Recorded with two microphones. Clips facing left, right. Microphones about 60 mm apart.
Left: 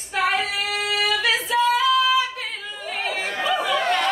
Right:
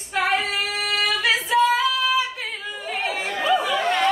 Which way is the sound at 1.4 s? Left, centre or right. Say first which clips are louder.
Even; centre.